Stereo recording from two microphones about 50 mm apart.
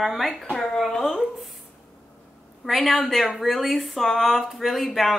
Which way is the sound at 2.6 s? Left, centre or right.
Centre.